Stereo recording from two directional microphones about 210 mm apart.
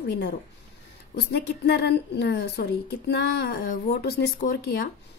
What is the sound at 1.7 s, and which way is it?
Speech, 55° left (ahead or behind).